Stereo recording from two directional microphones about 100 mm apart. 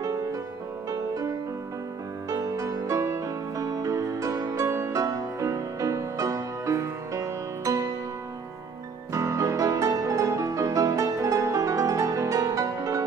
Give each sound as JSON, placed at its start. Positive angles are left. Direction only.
{"t": 0.0, "sound": "music", "side_deg": -35}
{"t": 9.1, "sound": "music", "side_deg": -30}